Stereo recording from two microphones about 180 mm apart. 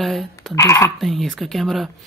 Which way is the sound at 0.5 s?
15° left (ahead or behind).